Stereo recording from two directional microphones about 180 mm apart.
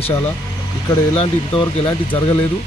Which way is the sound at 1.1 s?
30° left (ahead or behind).